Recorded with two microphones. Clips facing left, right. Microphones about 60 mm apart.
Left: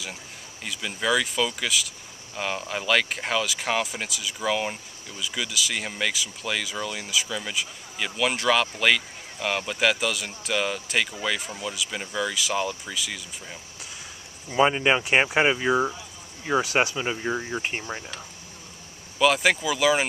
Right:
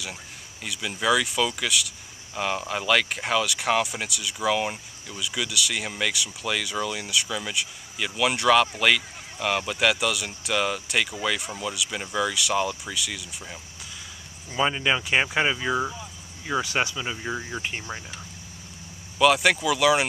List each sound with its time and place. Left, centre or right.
0.7 s speech: centre
14.5 s speech: centre
17.2 s speech: centre
17.6 s speech: left
19.1 s speech: centre